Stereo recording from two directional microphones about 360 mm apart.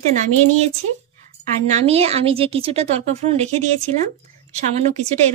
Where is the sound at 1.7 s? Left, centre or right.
Centre.